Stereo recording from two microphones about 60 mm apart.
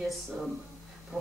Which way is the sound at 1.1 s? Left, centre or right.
Centre.